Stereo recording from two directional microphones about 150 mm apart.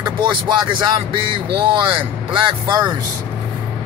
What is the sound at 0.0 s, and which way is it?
Speech, 30° right (ahead or behind).